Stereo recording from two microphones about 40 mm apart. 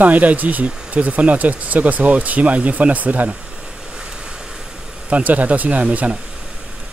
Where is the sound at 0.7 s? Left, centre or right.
Right.